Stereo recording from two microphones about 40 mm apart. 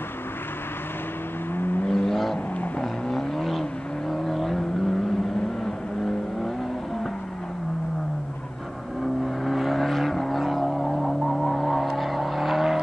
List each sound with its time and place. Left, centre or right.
1.6 s vehicle: left
1.9 s vehicle: centre
9.0 s vehicle: centre